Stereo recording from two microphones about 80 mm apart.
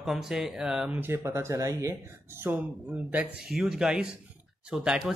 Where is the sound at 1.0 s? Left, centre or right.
Right.